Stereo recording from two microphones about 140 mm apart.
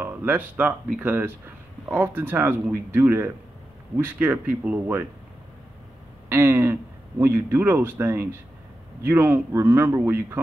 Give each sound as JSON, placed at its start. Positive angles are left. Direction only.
{"t": 0.0, "sound": "speech", "side_deg": -15}
{"t": 6.2, "sound": "speech", "side_deg": -20}